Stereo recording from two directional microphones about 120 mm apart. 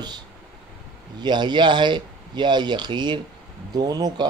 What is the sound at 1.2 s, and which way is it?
Speech, 40° right (ahead or behind).